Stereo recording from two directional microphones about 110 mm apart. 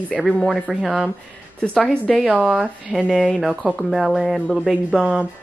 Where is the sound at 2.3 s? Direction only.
5° right (ahead or behind).